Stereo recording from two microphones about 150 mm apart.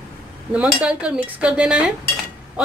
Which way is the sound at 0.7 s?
5° right (ahead or behind).